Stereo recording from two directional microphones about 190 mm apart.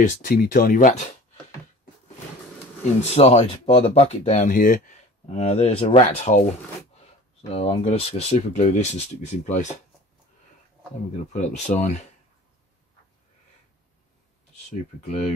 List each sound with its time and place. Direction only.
0.0 s speech: 45° left (ahead or behind)
3.2 s speech: 35° left (ahead or behind)
7.5 s speech: 30° left (ahead or behind)
11.3 s speech: 40° left (ahead or behind)
15.0 s speech: 35° left (ahead or behind)